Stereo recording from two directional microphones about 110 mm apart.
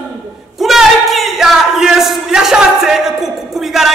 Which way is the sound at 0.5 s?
Centre (ahead or behind).